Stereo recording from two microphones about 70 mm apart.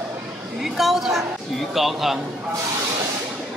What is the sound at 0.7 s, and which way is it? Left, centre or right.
A woman's voice, centre.